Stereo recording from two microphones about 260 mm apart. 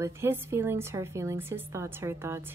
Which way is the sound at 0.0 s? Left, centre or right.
Centre.